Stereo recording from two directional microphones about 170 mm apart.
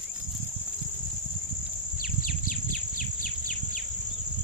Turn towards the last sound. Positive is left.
turn(degrees=50)  # may be behind; listen again after turning